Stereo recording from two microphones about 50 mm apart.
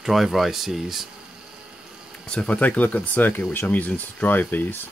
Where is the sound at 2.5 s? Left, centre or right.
Left.